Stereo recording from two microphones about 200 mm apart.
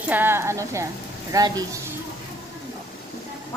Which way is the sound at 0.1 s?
10° right (ahead or behind).